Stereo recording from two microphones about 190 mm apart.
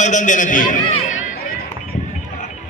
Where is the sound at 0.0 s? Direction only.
40° left (ahead or behind).